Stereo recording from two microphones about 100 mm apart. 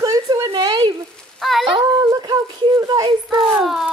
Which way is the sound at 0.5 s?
50° right (ahead or behind).